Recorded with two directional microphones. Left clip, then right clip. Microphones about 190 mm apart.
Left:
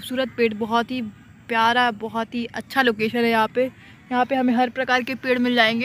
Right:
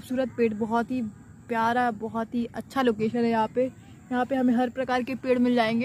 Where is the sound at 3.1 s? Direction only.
5° left (ahead or behind).